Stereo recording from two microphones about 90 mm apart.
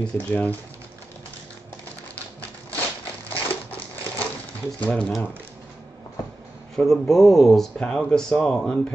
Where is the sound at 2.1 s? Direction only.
15° left (ahead or behind).